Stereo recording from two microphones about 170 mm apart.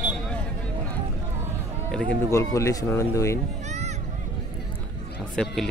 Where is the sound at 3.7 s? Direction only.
40° right (ahead or behind).